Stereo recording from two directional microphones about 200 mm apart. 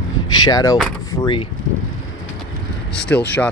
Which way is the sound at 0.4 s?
20° left (ahead or behind).